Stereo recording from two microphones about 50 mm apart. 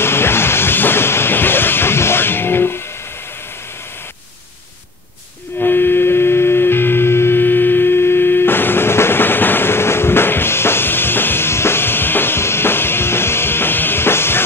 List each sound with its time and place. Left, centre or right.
0.0 s music: left
5.6 s music: left